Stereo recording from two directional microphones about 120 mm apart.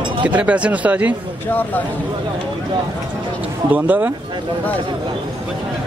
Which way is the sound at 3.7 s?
15° right (ahead or behind).